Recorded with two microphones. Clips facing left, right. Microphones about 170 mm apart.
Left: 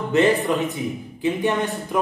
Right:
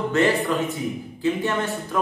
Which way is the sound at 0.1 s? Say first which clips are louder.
Left 4 dB; 20° left (ahead or behind).